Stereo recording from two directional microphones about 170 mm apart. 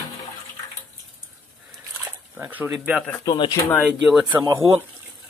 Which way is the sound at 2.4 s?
10° right (ahead or behind).